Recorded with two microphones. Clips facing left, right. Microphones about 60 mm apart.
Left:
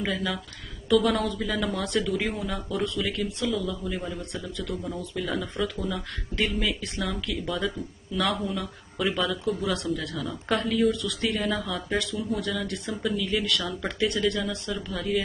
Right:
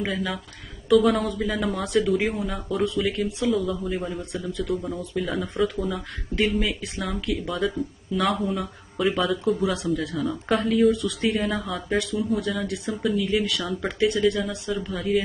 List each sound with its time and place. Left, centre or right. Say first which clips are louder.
0.0 s speech: right 1 dB; centre
2.7 s speech: right 5 dB; centre
3.4 s speech: right 5 dB; right
3.9 s speech: right 4 dB; centre
9.6 s speech: right 3 dB; centre
10.5 s speech: right 4 dB; centre
11.0 s speech: right 4 dB; centre
11.4 s speech: right 2 dB; centre
12.0 s speech: right 4 dB; centre
12.9 s speech: right 4 dB; centre